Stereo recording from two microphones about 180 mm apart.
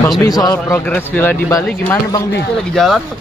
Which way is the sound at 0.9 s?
10° left (ahead or behind).